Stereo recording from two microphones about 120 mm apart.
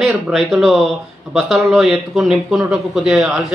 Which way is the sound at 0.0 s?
Centre (ahead or behind).